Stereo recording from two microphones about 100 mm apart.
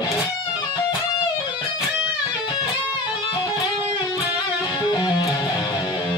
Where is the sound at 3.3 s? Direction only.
45° left (ahead or behind).